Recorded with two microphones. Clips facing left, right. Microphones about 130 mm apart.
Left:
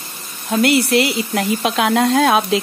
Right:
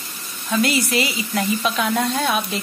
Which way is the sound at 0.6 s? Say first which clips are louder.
Left 7 dB; 65° left (ahead or behind).